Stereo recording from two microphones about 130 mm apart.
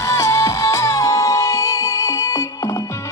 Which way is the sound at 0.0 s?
25° left (ahead or behind).